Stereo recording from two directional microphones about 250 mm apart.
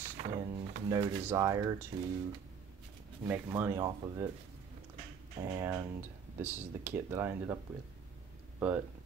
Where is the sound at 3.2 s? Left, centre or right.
Centre.